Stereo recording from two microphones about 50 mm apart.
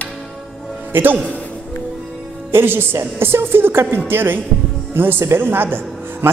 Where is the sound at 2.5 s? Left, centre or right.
Right.